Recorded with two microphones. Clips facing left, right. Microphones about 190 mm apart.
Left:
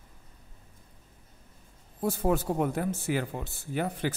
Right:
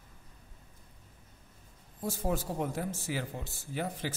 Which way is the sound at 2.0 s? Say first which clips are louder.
Left 6 dB; 65° left (ahead or behind).